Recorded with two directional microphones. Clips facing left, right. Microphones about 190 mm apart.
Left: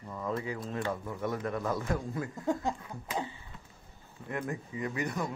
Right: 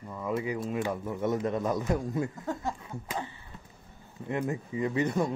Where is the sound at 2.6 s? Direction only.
15° left (ahead or behind).